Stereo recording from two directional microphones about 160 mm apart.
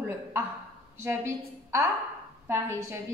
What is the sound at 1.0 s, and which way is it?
A woman's voice, 15° right (ahead or behind).